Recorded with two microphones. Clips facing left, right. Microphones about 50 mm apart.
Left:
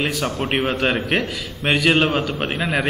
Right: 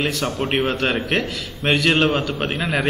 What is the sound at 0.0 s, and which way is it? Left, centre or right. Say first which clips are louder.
A man's voice: even; centre.